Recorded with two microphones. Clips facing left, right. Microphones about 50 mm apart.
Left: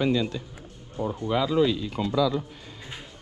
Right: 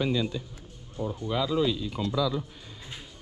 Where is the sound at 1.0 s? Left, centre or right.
Left.